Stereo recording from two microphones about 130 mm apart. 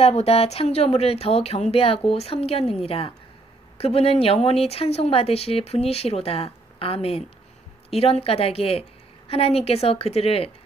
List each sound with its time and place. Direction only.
0.0 s speech: 50° left (ahead or behind)